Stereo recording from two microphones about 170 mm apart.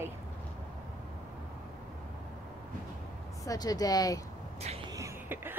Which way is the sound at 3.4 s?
20° left (ahead or behind).